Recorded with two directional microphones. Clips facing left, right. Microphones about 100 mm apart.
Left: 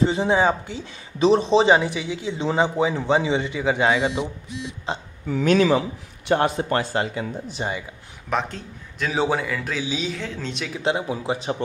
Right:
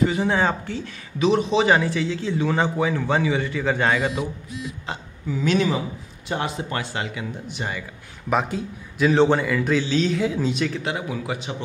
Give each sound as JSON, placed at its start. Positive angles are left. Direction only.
{"t": 0.0, "sound": "speech", "side_deg": 25}
{"t": 0.4, "sound": "speech", "side_deg": 15}
{"t": 1.2, "sound": "speech", "side_deg": 30}
{"t": 1.8, "sound": "speech", "side_deg": 15}
{"t": 5.3, "sound": "a man's voice", "side_deg": 55}
{"t": 5.6, "sound": "a man's voice", "side_deg": 85}
{"t": 6.3, "sound": "speech", "side_deg": 50}
{"t": 8.3, "sound": "a man's voice", "side_deg": -5}
{"t": 10.1, "sound": "a man's voice", "side_deg": -10}
{"t": 10.8, "sound": "speech", "side_deg": 30}